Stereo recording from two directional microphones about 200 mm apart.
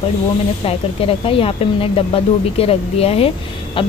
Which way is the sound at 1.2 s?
30° left (ahead or behind).